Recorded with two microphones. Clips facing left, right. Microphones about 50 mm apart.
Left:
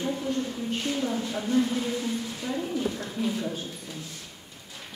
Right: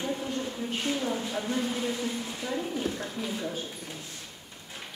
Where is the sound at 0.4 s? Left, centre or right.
Centre.